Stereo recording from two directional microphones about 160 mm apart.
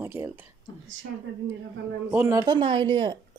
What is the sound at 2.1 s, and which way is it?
Speech, 20° right (ahead or behind).